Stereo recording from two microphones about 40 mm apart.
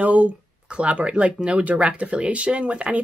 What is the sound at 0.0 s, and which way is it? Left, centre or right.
Speech, right.